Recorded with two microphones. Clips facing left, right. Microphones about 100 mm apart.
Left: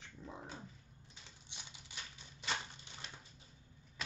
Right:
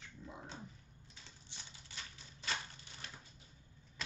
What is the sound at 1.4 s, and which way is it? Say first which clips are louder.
Typing: left 2 dB; 15° left (ahead or behind).